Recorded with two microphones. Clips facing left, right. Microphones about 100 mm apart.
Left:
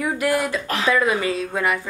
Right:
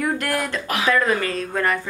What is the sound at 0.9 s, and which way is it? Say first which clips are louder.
Speech: left 1 dB; 10° left (ahead or behind).